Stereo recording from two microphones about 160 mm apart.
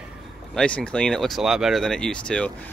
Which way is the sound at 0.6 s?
5° left (ahead or behind).